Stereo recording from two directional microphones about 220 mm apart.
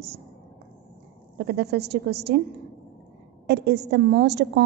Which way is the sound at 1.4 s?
50° right (ahead or behind).